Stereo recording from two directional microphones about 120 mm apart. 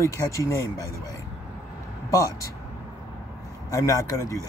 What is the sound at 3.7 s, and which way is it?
Speech, 25° left (ahead or behind).